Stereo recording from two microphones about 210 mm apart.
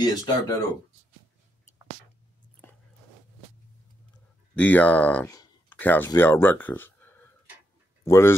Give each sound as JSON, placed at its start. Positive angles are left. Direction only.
{"t": 0.0, "sound": "speech", "side_deg": 15}
{"t": 2.6, "sound": "a sound", "side_deg": 10}
{"t": 4.6, "sound": "speech", "side_deg": 5}